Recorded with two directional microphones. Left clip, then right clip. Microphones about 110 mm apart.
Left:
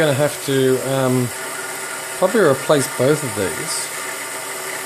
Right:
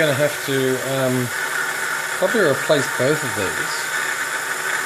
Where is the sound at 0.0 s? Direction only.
5° left (ahead or behind).